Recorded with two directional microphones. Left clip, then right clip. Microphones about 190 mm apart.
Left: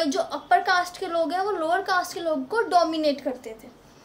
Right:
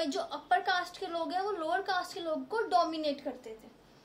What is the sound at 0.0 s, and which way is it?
A woman's voice, 10° left (ahead or behind).